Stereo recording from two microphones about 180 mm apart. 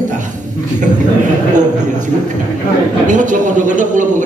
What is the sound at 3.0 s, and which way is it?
A man's voice, 45° right (ahead or behind).